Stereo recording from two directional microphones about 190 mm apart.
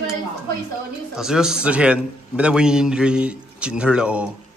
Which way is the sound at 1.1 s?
5° right (ahead or behind).